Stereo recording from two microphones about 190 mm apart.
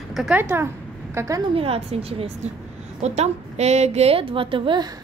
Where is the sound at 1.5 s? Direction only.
30° right (ahead or behind).